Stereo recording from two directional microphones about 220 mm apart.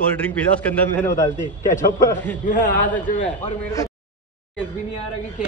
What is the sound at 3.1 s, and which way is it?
Speech, 35° left (ahead or behind).